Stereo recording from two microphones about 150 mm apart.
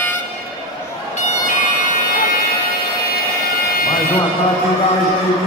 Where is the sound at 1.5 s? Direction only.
60° left (ahead or behind).